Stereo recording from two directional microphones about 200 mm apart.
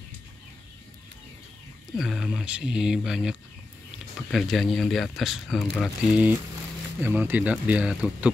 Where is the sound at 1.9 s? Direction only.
Centre (ahead or behind).